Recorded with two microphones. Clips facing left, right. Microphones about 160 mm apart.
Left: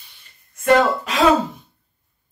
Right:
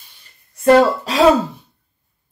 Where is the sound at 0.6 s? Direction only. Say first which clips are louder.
Right 4 dB; 35° right (ahead or behind).